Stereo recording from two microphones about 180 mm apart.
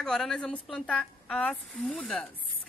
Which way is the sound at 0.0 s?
Centre (ahead or behind).